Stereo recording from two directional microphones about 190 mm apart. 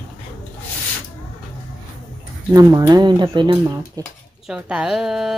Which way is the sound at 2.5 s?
20° right (ahead or behind).